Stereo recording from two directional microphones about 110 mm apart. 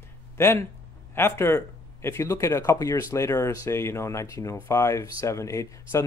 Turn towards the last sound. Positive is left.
turn(degrees=25)  # may be behind; listen again after turning